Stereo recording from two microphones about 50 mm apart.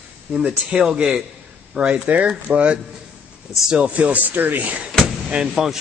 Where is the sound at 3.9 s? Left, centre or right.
Right.